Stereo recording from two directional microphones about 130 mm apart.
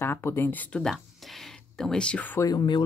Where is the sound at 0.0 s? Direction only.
20° left (ahead or behind).